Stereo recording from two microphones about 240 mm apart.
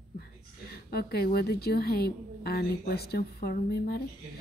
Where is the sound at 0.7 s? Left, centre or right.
Left.